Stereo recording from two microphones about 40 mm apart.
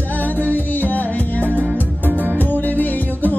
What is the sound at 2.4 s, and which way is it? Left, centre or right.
Music, left.